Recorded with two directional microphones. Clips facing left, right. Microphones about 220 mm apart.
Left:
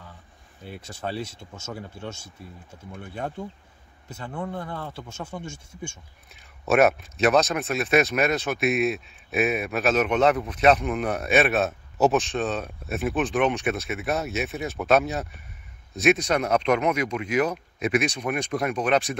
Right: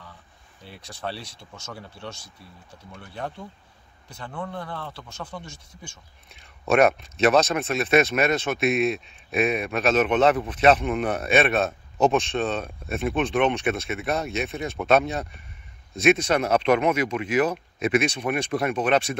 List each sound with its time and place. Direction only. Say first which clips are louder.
0.7 s speech: even; 5° left (ahead or behind)
1.2 s speech: left 6 dB; 25° left (ahead or behind)
2.7 s speech: left 3 dB; 10° left (ahead or behind)
6.3 s speech: even; centre (ahead or behind)